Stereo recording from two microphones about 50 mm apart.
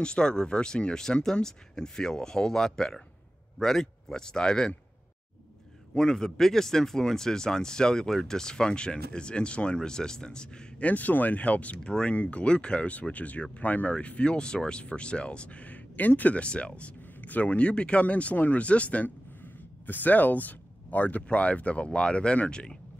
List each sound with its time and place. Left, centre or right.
0.0 s speech: centre
5.9 s speech: centre
10.9 s speech: left
11.8 s speech: centre